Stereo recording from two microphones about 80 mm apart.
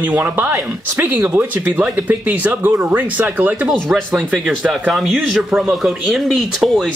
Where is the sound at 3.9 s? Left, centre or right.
Centre.